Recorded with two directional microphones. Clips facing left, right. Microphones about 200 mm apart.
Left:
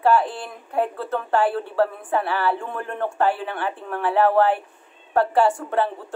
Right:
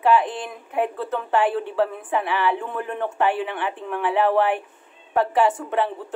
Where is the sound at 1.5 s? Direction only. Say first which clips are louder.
Left 1 dB; 15° right (ahead or behind).